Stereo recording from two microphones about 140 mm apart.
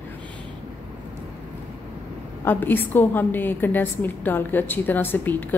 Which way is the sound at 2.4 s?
15° left (ahead or behind).